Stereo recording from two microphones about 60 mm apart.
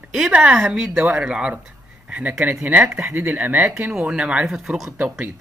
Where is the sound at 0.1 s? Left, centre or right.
Centre.